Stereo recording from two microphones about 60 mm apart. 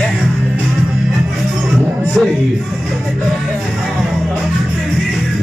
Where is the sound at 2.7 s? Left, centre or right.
Centre.